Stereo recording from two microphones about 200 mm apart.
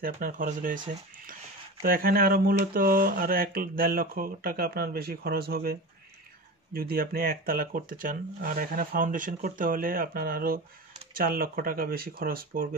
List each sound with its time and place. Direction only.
0.0 s speech: 45° right (ahead or behind)